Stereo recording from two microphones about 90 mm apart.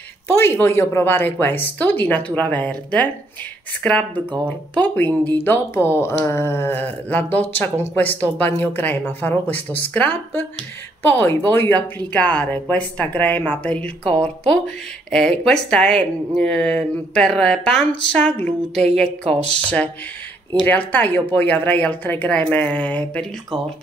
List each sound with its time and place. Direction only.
0.3 s speech: 25° left (ahead or behind); by 19.1 s 10° left (ahead or behind)
20.6 s speech: 20° left (ahead or behind)